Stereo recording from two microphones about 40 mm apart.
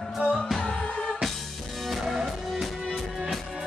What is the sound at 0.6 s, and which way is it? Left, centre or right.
Music, left.